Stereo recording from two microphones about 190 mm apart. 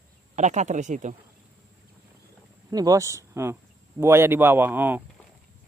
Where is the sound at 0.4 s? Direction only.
40° right (ahead or behind).